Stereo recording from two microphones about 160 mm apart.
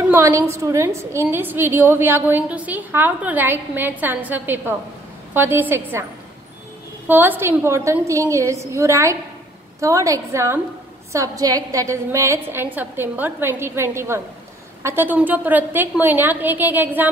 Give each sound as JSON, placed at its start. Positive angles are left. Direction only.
{"t": 0.1, "sound": "a woman's voice", "side_deg": -15}
{"t": 7.1, "sound": "a woman's voice", "side_deg": -10}